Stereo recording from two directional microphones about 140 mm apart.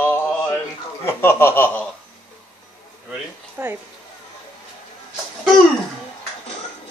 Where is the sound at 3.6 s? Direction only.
15° right (ahead or behind).